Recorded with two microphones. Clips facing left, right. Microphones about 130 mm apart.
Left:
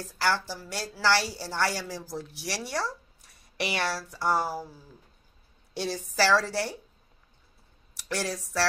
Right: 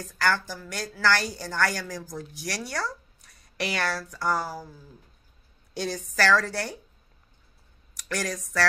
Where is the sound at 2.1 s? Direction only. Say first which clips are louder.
Left 1 dB; 25° left (ahead or behind).